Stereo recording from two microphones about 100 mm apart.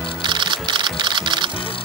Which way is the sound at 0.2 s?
50° right (ahead or behind).